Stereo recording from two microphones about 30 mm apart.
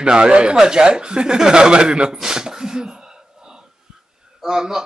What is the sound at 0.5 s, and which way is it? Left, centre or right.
Speech, right.